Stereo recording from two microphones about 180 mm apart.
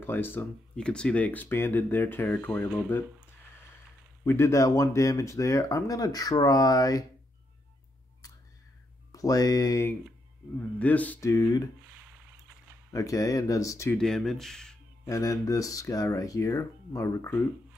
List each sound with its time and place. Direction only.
0.0 s speech: 10° left (ahead or behind)
4.2 s speech: 15° left (ahead or behind)
9.1 s speech: 20° left (ahead or behind)
11.9 s a sound: 10° right (ahead or behind)
12.9 s speech: 20° left (ahead or behind)
13.9 s speech: centre (ahead or behind)
15.0 s speech: 20° left (ahead or behind)